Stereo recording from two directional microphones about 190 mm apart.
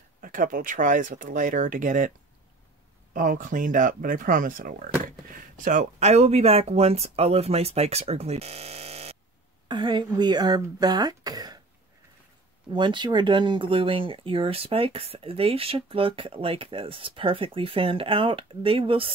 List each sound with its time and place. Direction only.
0.2 s speech: 45° right (ahead or behind); by 11.6 s 20° right (ahead or behind)
12.7 s speech: 25° right (ahead or behind)